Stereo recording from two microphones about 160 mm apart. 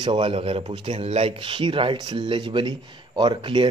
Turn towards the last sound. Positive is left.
turn(degrees=-30)  # may be behind; listen again after turning